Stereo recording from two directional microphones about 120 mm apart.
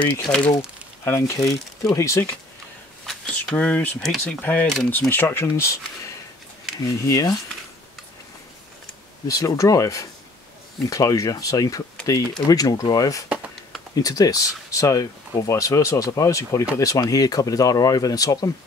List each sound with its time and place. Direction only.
0.0 s speech: 10° left (ahead or behind)
3.1 s speech: 5° left (ahead or behind); by 5.8 s 20° left (ahead or behind)
7.1 s speech: 25° left (ahead or behind)
9.3 s speech: 25° left (ahead or behind)